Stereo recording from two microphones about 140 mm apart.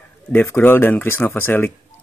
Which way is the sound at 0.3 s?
15° left (ahead or behind).